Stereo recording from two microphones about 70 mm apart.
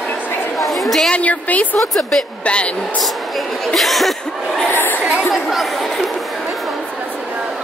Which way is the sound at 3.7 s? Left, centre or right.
Centre.